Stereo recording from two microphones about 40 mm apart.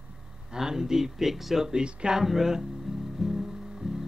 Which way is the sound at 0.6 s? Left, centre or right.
Centre.